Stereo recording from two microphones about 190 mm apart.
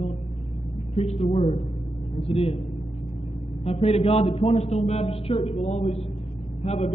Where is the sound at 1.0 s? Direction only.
35° left (ahead or behind).